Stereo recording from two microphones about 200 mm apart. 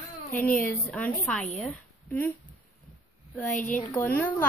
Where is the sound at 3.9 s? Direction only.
10° left (ahead or behind).